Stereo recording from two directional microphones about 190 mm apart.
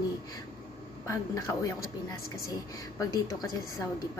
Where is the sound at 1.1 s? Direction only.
15° left (ahead or behind).